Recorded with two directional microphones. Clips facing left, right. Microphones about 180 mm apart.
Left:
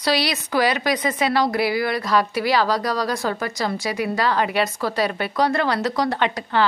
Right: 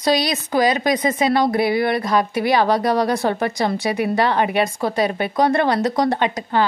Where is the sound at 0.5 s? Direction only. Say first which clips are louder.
Right 3 dB; 20° right (ahead or behind).